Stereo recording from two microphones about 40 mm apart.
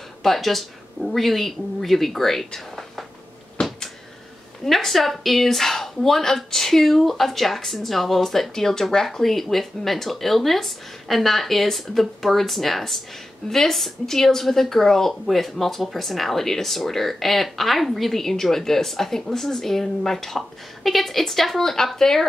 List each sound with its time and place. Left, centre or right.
0.2 s a woman's voice: centre
3.6 s a sound: centre
4.6 s a woman's voice: centre